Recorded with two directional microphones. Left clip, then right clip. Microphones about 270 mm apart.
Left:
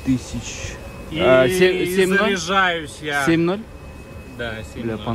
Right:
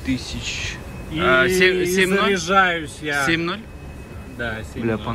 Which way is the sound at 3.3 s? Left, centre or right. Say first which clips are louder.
Left 3 dB; centre.